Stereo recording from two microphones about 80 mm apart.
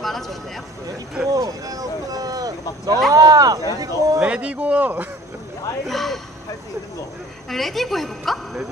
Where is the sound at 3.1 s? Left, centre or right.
Right.